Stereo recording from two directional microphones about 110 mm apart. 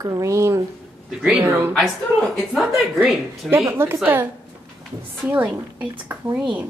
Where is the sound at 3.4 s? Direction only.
20° right (ahead or behind).